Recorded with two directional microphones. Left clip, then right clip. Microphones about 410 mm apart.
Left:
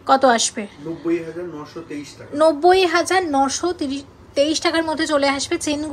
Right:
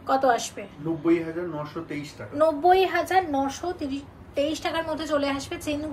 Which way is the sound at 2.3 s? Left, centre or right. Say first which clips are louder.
Left 5 dB; left.